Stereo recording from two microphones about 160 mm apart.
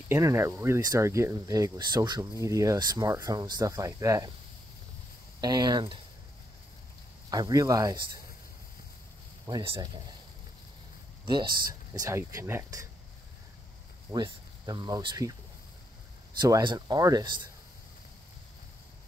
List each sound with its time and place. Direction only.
0.1 s speech: 15° right (ahead or behind)
5.4 s speech: 25° right (ahead or behind)
7.2 s speech: 25° right (ahead or behind)
9.5 s speech: 25° right (ahead or behind)
11.2 s speech: 30° right (ahead or behind)
14.1 s speech: 25° right (ahead or behind)
16.3 s speech: 25° right (ahead or behind)